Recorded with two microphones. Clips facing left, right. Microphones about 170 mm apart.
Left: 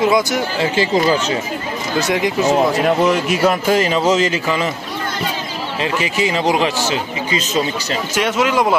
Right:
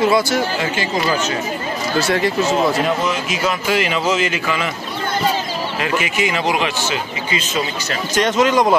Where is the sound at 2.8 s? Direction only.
60° left (ahead or behind); by 4.7 s 35° left (ahead or behind).